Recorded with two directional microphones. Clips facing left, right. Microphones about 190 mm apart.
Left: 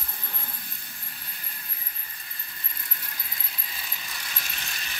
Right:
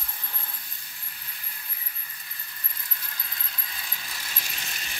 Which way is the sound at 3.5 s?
5° left (ahead or behind).